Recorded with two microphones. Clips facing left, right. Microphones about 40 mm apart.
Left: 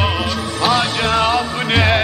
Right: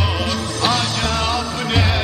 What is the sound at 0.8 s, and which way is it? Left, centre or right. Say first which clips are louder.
Music: left 4 dB; left.